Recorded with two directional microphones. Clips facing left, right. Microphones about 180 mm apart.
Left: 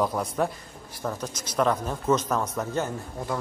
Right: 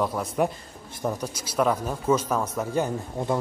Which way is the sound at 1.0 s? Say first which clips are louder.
Right 3 dB; 15° right (ahead or behind).